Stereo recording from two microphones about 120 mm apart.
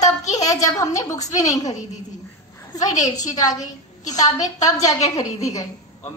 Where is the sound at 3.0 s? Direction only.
30° left (ahead or behind).